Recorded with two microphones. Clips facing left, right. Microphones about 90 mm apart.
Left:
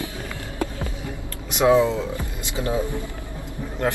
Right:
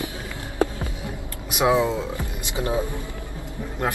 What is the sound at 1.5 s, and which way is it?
A man's voice, 15° right (ahead or behind).